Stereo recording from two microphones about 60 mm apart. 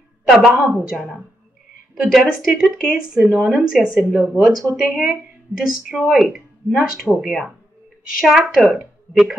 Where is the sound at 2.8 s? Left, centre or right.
Centre.